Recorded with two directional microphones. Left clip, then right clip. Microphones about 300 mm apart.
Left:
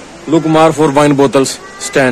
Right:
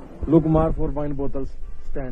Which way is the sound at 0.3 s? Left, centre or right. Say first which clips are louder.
Left 10 dB; centre.